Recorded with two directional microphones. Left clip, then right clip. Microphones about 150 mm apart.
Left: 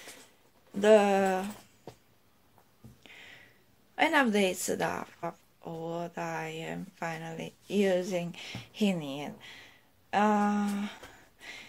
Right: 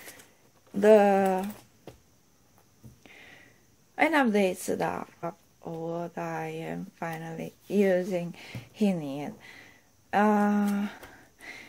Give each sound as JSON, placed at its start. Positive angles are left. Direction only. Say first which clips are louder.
{"t": 0.7, "sound": "speech", "louder": "right 3 dB", "side_deg": -35}
{"t": 3.0, "sound": "a sound", "louder": "even", "side_deg": -40}
{"t": 3.9, "sound": "speech", "louder": "right 2 dB", "side_deg": -30}